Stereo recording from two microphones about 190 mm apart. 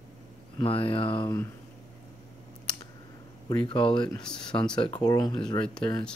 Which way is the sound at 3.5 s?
25° left (ahead or behind).